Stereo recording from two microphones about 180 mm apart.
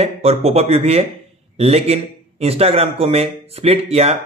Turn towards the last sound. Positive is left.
turn(degrees=-35)  # may be behind; listen again after turning